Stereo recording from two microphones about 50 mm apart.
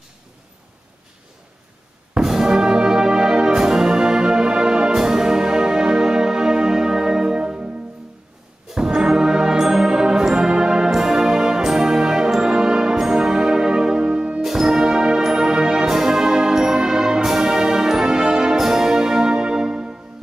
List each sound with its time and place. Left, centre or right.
2.1 s music: centre
8.7 s music: centre
14.4 s brass instrument: centre